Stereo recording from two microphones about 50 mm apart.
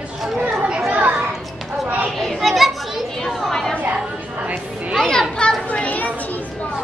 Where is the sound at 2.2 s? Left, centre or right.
Centre.